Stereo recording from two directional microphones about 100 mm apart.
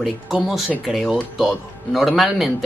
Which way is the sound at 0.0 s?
Centre (ahead or behind).